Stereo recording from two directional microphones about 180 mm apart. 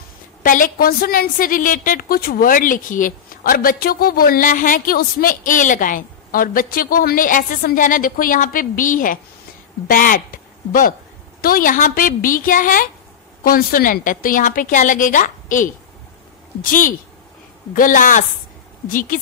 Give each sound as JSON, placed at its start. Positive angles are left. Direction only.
{"t": 0.4, "sound": "a woman's voice", "side_deg": 50}